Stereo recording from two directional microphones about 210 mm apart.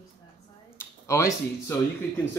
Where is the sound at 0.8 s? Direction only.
15° left (ahead or behind).